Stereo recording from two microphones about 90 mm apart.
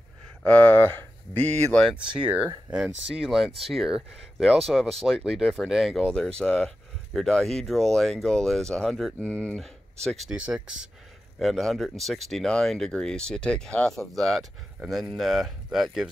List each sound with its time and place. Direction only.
0.5 s speech: 20° left (ahead or behind)
2.1 s speech: 15° right (ahead or behind); by 9.6 s 15° left (ahead or behind)
9.6 s speech: centre (ahead or behind)
10.3 s speech: 10° right (ahead or behind)
11.3 s speech: centre (ahead or behind)